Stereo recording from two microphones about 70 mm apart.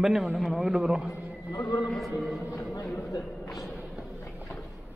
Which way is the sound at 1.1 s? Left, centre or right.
Left.